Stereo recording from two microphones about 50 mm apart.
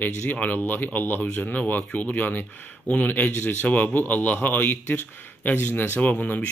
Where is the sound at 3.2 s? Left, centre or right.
Left.